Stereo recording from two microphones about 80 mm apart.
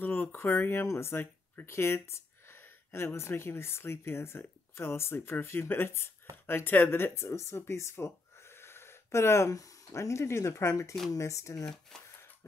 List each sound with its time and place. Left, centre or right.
0.0 s speech: left
11.6 s speech: centre